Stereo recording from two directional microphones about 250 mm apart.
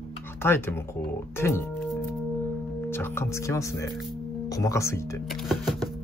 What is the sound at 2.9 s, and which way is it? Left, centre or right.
Speech, centre.